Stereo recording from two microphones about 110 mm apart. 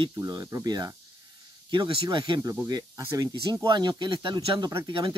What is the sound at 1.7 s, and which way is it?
Speech, 50° right (ahead or behind).